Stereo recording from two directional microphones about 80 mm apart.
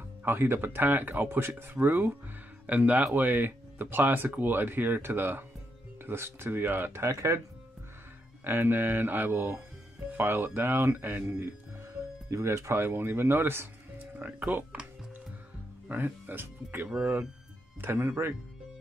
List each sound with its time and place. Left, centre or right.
0.2 s speech: right
8.5 s speech: right
12.3 s speech: right; by 14.9 s centre
15.9 s speech: right
16.9 s speech: centre
17.8 s speech: right